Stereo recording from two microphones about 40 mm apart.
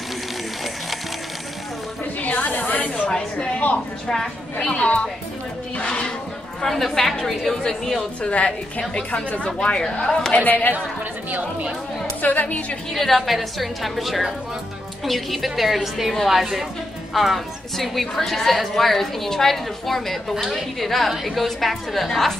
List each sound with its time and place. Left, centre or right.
2.2 s snake: left
3.3 s a woman's voice: left
4.1 s a woman's voice: centre
4.6 s a woman's voice: left
6.6 s a woman's voice: centre
8.2 s a woman's voice: left
10.3 s speech: left
12.2 s a woman's voice: left
12.9 s a woman's voice: centre